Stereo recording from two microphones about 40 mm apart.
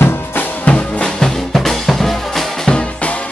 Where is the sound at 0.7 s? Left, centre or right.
Left.